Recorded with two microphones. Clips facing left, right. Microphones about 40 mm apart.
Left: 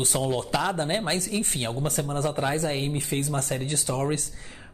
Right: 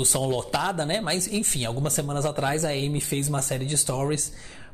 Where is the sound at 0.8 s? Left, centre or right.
Left.